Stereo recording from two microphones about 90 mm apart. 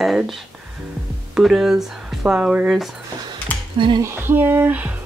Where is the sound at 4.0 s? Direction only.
25° right (ahead or behind).